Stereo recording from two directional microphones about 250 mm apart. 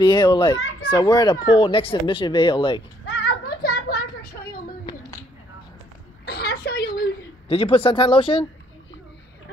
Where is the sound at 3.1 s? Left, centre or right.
Left.